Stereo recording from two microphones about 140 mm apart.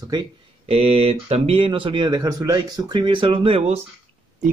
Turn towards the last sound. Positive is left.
turn(degrees=-45)  # may be behind; listen again after turning